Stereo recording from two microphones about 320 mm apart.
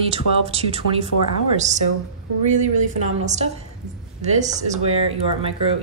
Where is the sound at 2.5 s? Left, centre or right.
Right.